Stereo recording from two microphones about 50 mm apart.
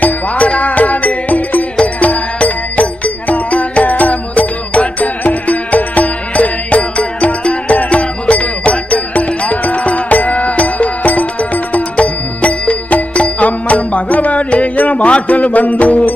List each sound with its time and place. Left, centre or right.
0.0 s music: left